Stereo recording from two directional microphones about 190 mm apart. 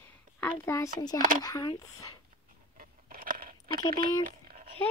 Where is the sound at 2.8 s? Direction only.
50° right (ahead or behind).